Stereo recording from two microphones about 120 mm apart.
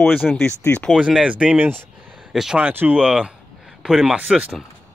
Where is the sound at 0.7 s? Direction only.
10° left (ahead or behind).